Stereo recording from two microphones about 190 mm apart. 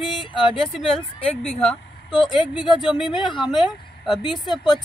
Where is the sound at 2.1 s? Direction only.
25° left (ahead or behind).